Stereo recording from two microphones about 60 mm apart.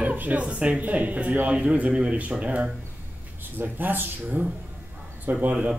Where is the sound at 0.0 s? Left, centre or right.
Right.